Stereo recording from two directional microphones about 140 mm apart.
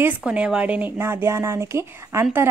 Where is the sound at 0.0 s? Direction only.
10° right (ahead or behind).